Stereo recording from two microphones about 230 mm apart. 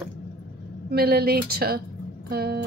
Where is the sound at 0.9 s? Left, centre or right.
Right.